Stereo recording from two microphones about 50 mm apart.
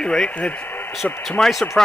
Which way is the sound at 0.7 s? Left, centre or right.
Left.